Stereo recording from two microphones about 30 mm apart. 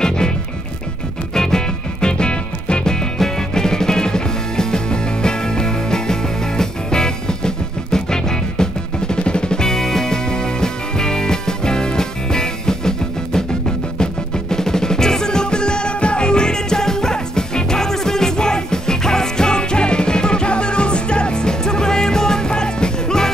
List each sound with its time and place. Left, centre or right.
1.3 s music: centre